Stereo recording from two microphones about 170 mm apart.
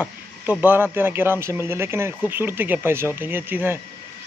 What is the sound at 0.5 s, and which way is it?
Speech, 10° right (ahead or behind).